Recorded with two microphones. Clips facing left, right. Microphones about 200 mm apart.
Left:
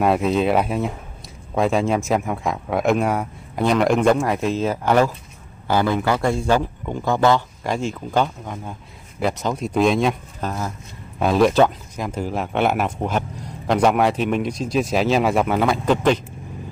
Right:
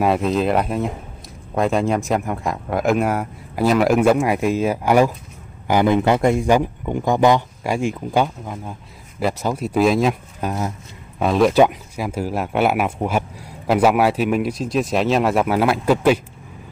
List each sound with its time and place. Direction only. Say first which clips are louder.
0.0 s a man's voice: even; centre (ahead or behind)
11.5 s speech: right 2 dB; 10° right (ahead or behind)